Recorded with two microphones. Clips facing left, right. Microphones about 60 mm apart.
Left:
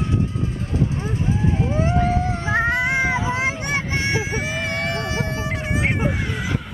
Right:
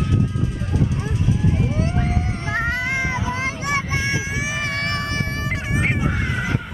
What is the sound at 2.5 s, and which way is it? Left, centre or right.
Child singing, left.